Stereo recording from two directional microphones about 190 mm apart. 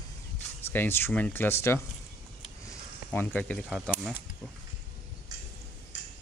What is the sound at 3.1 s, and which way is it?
Speech, 10° left (ahead or behind).